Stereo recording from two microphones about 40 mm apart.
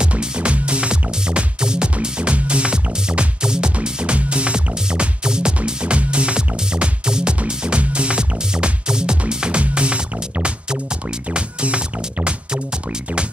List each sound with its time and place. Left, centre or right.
0.2 s music: right